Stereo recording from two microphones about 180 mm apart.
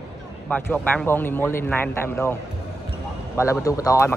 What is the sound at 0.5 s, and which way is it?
Speech, 10° left (ahead or behind).